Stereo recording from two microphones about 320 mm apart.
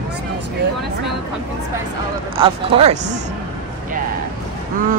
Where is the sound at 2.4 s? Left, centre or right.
Centre.